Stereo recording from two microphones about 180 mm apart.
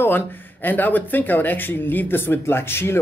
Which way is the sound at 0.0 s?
10° left (ahead or behind).